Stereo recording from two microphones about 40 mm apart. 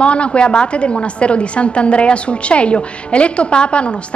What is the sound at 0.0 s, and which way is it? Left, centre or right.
A woman's voice, left.